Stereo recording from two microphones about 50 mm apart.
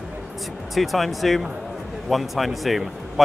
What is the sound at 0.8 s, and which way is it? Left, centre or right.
Speech, centre.